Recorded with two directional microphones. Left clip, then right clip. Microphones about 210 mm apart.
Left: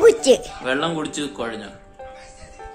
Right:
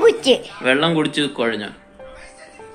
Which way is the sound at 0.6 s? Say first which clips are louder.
Right 7 dB; 10° right (ahead or behind).